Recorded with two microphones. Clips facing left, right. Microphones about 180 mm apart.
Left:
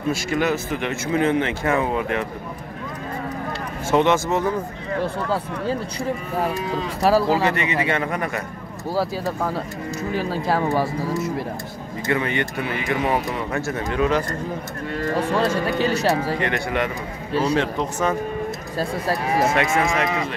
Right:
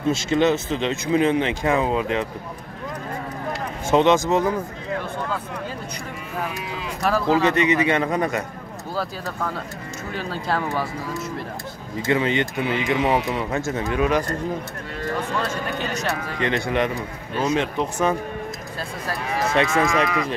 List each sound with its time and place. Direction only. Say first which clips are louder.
0.1 s speech: right 3 dB; 25° right (ahead or behind)
3.9 s speech: right 1 dB; 20° right (ahead or behind)
6.4 s speech: left 6 dB; 35° left (ahead or behind)
7.4 s speech: right 3 dB; 20° right (ahead or behind)
10.1 s speech: left 3 dB; 5° left (ahead or behind)
10.6 s speech: left 5 dB; 30° left (ahead or behind)
12.1 s speech: right 2 dB; 20° right (ahead or behind)
15.1 s speech: left 6 dB; 35° left (ahead or behind)
16.4 s speech: right 1 dB; 20° right (ahead or behind)
17.3 s a man's voice: left 2 dB; 30° left (ahead or behind)
17.6 s speech: even; 15° right (ahead or behind)
18.8 s speech: left 7 dB; 30° left (ahead or behind)